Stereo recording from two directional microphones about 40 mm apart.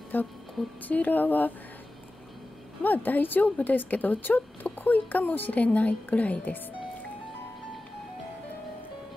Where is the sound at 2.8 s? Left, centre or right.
Left.